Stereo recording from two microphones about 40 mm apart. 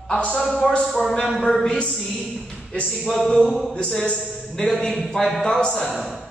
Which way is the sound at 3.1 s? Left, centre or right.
Centre.